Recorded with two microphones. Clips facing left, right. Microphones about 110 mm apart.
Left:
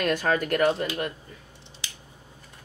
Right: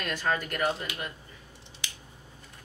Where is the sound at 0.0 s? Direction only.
55° left (ahead or behind).